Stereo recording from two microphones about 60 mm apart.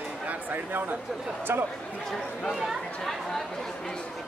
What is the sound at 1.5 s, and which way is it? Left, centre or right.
Speech, right.